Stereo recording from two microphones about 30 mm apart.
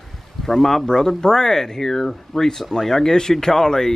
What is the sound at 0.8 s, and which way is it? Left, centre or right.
Speech, left.